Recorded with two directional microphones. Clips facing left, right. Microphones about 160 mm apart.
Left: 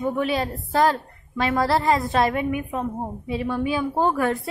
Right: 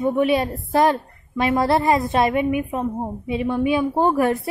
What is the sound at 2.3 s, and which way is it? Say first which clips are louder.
Speech: right 4 dB; 10° right (ahead or behind).